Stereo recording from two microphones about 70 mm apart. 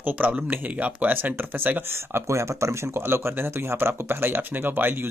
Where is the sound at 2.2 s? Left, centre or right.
Right.